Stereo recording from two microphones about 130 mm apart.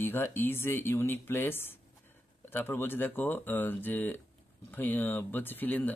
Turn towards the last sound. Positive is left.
turn(degrees=15)  # may be behind; listen again after turning